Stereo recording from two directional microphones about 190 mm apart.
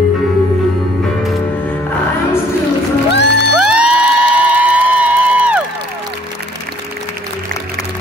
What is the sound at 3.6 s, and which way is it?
Music, 5° right (ahead or behind).